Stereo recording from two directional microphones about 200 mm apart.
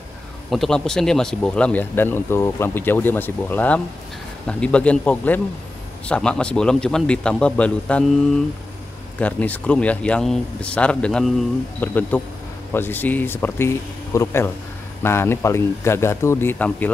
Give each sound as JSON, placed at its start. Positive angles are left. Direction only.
{"t": 0.5, "sound": "speech", "side_deg": 0}
{"t": 9.2, "sound": "speech", "side_deg": 5}